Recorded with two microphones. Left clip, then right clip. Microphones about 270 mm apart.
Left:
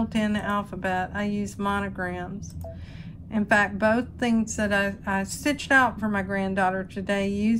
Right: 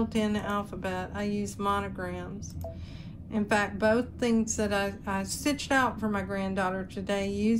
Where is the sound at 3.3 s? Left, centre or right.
Right.